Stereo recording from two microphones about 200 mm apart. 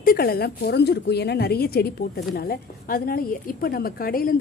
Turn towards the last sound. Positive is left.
turn(degrees=45)  # may be behind; listen again after turning